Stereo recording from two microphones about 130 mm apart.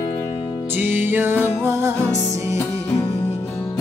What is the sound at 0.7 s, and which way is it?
Music, 15° right (ahead or behind).